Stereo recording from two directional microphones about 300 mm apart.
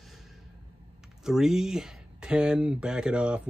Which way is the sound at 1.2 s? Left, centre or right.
Centre.